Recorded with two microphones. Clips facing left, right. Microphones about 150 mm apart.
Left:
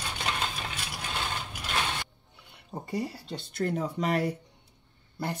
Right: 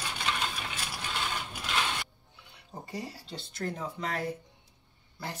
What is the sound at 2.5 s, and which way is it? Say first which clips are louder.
Speech: left 6 dB; 55° left (ahead or behind).